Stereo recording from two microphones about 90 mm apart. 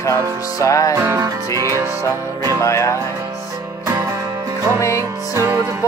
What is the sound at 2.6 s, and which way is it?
Music, 35° left (ahead or behind).